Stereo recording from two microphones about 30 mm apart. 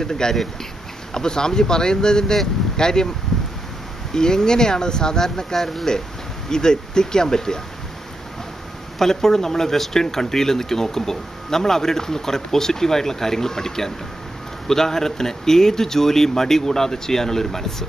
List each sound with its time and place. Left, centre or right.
0.0 s speech: centre
3.3 s a sound: centre
4.1 s speech: left
6.5 s speech: left
9.0 s speech: centre